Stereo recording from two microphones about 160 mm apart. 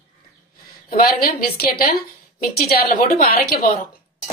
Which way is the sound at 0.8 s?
65° left (ahead or behind).